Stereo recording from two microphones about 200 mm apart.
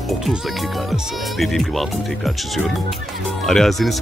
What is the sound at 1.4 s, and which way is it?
Speech, centre (ahead or behind).